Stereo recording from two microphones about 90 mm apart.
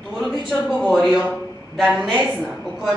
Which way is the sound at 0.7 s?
Centre (ahead or behind).